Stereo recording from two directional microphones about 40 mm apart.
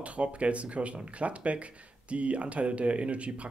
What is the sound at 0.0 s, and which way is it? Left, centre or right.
Speech, right.